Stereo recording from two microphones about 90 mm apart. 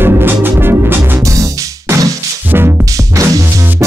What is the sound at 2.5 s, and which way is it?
Music, 25° right (ahead or behind).